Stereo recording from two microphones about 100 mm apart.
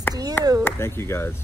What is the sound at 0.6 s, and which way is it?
Speech, 25° left (ahead or behind).